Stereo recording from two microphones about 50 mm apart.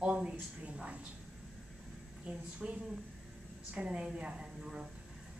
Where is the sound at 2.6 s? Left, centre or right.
Centre.